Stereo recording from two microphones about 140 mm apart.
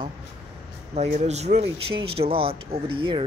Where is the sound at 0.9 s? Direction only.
55° right (ahead or behind); by 3.2 s 40° right (ahead or behind).